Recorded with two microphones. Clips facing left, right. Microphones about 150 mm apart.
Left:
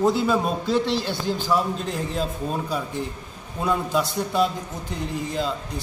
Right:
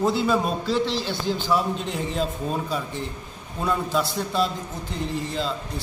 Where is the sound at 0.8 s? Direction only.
50° left (ahead or behind).